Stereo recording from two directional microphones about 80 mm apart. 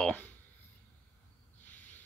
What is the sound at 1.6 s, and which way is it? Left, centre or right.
Owl, left.